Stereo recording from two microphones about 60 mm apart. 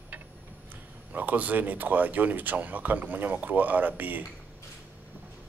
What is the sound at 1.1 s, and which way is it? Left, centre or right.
Speech, right.